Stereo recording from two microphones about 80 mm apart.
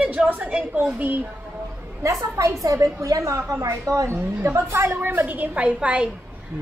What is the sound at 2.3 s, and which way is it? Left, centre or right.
A woman's voice, right.